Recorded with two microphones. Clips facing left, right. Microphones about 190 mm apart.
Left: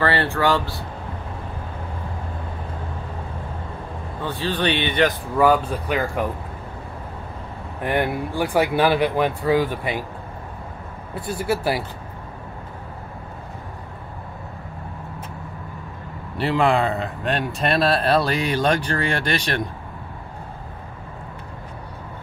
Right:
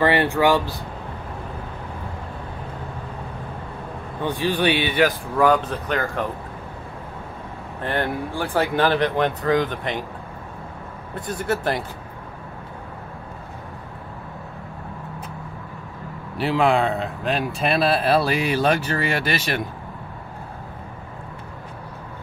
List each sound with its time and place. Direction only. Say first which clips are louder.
0.0 s speech: right 2 dB; 15° right (ahead or behind)
4.2 s speech: right 2 dB; 15° right (ahead or behind)
5.4 s speech: left 1 dB; 10° left (ahead or behind)
7.8 s speech: left 2 dB; 10° left (ahead or behind)
11.1 s speech: left 1 dB; 5° left (ahead or behind)
16.3 s speech: even; centre (ahead or behind)